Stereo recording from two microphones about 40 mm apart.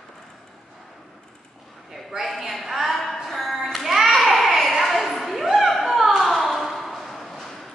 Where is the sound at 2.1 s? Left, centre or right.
Centre.